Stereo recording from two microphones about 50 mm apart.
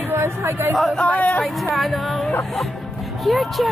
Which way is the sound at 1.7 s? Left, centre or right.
Centre.